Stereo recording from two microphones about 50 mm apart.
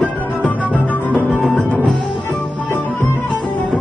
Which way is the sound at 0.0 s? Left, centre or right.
Left.